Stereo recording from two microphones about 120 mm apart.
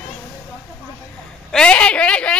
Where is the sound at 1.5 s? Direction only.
10° left (ahead or behind).